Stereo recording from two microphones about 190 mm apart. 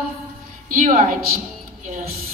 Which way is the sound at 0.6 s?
45° right (ahead or behind).